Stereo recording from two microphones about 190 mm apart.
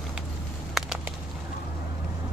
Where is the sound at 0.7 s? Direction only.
Centre (ahead or behind).